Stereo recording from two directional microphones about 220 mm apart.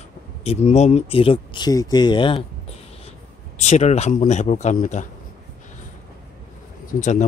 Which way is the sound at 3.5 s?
30° left (ahead or behind).